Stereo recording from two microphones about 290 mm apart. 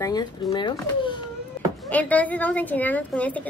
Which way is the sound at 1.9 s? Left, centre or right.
Centre.